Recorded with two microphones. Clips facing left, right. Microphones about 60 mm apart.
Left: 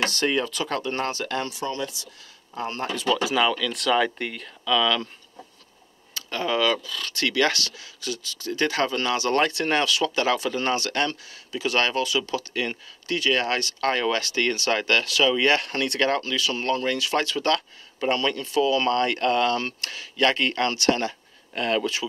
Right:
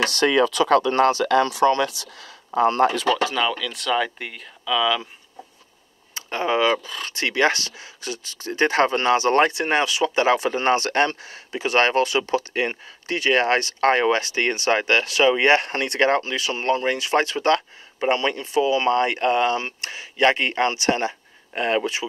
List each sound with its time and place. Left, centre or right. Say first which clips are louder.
0.1 s speech: right 6 dB; right
3.3 s speech: left 1 dB; centre
6.1 s speech: right 3 dB; right